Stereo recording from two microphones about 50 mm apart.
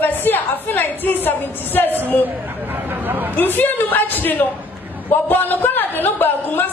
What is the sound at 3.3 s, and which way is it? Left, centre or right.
A woman's voice, left.